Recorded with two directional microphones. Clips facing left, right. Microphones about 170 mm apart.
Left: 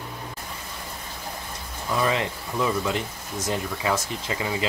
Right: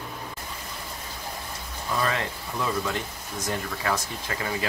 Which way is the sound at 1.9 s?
15° left (ahead or behind).